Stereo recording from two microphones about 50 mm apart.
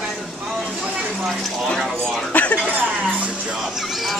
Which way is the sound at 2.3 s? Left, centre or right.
Left.